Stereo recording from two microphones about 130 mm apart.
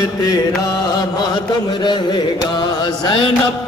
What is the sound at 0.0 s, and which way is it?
Mantra, 30° left (ahead or behind).